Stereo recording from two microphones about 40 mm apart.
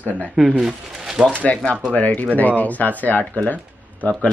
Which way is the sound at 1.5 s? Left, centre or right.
Left.